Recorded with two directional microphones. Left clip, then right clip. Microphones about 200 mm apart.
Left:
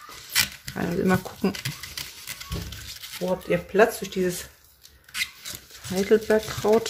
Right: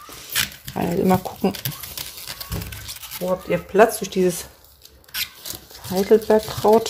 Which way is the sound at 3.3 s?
5° right (ahead or behind).